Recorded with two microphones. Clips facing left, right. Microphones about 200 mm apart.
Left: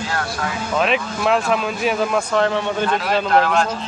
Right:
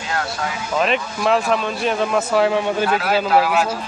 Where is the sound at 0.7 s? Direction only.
Centre (ahead or behind).